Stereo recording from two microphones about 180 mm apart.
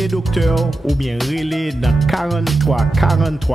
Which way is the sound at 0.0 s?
Centre (ahead or behind).